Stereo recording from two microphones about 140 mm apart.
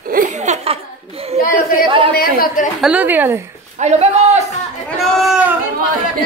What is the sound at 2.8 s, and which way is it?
Speech, 10° right (ahead or behind).